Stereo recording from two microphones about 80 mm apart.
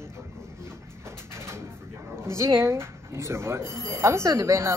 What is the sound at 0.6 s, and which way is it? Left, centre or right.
Speech, right.